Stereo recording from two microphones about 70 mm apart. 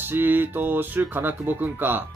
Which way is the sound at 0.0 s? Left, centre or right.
Right.